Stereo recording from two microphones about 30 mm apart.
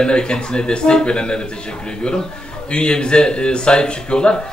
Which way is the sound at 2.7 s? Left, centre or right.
Left.